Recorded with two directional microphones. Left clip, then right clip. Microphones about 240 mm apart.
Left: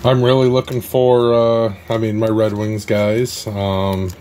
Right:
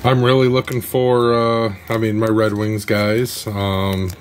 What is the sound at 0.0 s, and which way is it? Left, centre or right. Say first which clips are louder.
Speech: left 1 dB; centre.